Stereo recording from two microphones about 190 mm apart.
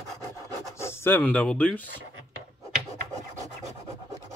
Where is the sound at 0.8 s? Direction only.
15° left (ahead or behind).